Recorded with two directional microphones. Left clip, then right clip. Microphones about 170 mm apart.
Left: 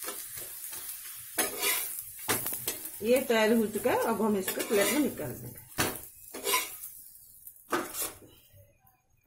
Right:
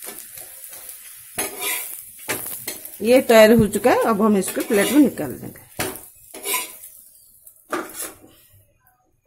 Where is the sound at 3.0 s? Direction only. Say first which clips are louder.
Right 13 dB; 60° right (ahead or behind).